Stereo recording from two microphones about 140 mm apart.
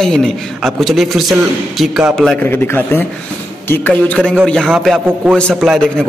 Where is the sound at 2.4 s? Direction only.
15° left (ahead or behind).